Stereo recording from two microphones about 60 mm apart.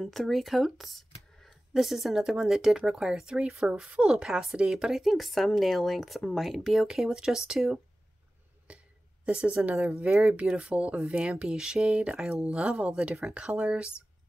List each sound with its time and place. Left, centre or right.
0.0 s speech: centre
8.7 s a sound: centre
9.2 s speech: centre